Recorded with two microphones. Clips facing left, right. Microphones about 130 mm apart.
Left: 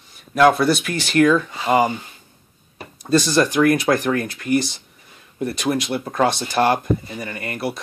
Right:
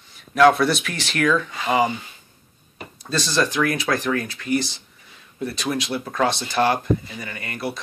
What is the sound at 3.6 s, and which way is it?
Speech, 50° left (ahead or behind).